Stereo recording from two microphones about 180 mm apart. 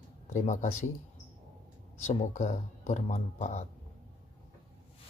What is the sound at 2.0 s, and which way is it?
Speech, 40° left (ahead or behind).